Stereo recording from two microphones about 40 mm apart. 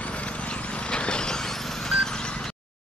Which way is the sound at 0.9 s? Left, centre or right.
Left.